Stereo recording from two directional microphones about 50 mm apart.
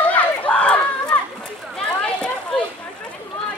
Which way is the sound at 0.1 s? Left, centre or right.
Left.